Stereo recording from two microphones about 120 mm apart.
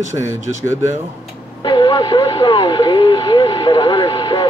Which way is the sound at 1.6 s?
40° left (ahead or behind).